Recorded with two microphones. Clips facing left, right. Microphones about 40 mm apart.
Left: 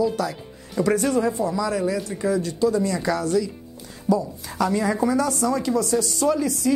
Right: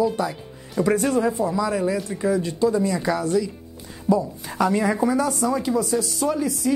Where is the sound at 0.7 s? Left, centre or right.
Centre.